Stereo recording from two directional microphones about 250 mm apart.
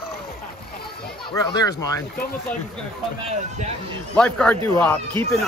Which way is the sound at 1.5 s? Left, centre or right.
Centre.